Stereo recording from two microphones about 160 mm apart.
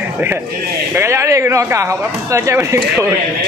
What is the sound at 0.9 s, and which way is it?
Speech, 15° right (ahead or behind).